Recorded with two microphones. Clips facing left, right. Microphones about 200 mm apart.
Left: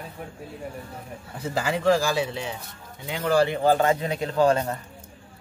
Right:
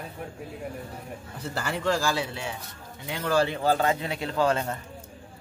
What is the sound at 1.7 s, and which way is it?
Speech, 15° left (ahead or behind).